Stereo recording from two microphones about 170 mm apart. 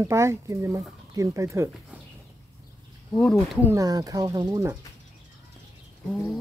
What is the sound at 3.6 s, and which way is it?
Speech, 15° right (ahead or behind).